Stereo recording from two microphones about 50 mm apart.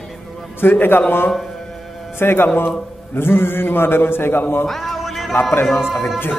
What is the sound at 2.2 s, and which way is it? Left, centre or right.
A man's voice, left.